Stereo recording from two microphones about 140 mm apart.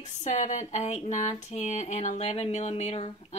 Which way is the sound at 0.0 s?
55° left (ahead or behind).